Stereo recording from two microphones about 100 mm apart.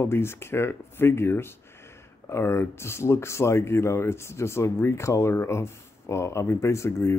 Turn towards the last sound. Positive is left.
turn(degrees=25)  # may be behind; listen again after turning